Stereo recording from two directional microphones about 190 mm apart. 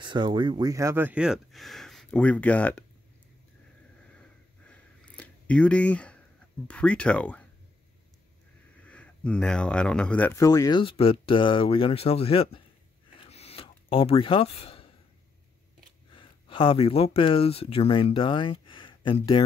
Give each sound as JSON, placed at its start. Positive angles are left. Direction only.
{"t": 0.0, "sound": "speech", "side_deg": -25}
{"t": 4.1, "sound": "a sound", "side_deg": 5}
{"t": 6.7, "sound": "speech", "side_deg": 5}
{"t": 8.8, "sound": "speech", "side_deg": 5}
{"t": 13.3, "sound": "a sound", "side_deg": 30}
{"t": 16.1, "sound": "speech", "side_deg": 25}